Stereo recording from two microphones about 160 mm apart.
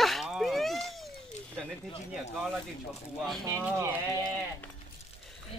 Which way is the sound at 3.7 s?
15° right (ahead or behind).